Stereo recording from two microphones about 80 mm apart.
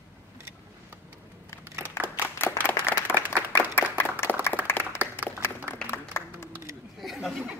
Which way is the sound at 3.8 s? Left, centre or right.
Left.